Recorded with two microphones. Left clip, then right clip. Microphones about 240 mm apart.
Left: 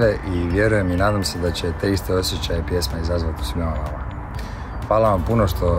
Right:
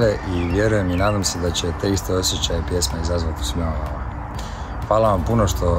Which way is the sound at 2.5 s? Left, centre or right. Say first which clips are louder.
Even; centre.